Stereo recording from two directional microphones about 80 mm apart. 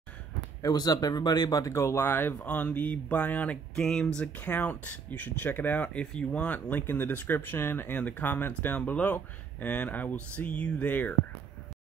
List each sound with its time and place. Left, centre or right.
0.6 s speech: left
3.7 s speech: centre
4.2 s speech: left